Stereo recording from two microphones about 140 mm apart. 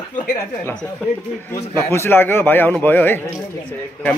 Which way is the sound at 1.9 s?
15° left (ahead or behind).